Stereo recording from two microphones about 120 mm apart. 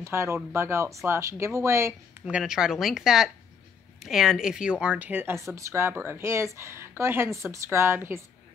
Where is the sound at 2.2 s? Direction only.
5° right (ahead or behind).